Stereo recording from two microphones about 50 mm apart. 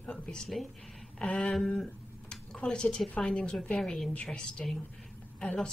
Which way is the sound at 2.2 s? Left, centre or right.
Centre.